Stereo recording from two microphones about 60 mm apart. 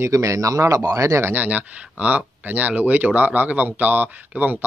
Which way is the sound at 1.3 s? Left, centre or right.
Right.